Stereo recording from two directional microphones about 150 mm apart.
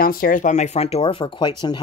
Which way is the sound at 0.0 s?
75° left (ahead or behind).